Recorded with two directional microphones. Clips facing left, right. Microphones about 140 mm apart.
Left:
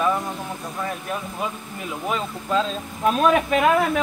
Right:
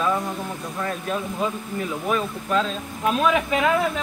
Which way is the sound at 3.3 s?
55° left (ahead or behind).